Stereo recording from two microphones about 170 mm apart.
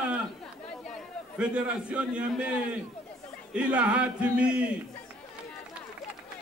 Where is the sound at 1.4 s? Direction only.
5° right (ahead or behind).